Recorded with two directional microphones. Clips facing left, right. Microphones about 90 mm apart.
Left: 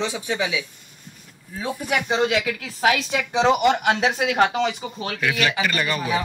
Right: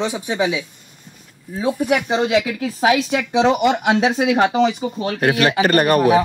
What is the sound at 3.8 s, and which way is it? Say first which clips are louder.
Speech: right 4 dB; 15° right (ahead or behind).